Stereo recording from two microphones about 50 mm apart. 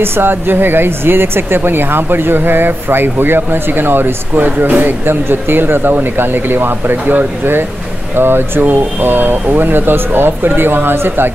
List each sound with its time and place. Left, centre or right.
0.0 s speech: right